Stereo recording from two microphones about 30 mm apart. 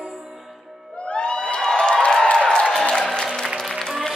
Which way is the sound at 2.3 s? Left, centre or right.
Left.